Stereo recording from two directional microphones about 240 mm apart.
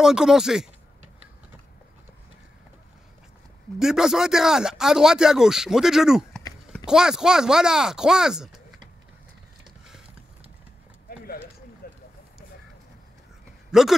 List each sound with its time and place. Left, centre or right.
0.0 s speech: centre
3.8 s speech: centre
11.8 s vehicle: left
13.7 s speech: centre